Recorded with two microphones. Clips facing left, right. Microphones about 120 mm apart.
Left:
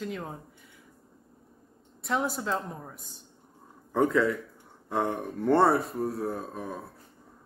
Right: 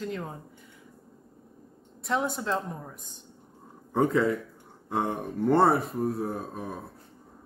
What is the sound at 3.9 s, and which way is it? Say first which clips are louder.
Speech: even; 25° right (ahead or behind).